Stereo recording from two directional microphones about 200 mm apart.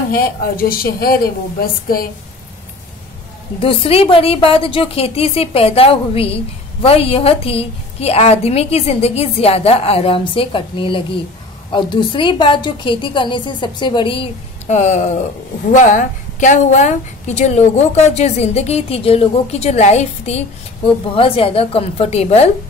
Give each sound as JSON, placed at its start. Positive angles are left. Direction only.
{"t": 0.1, "sound": "speech", "side_deg": 45}
{"t": 3.5, "sound": "a woman's voice", "side_deg": 25}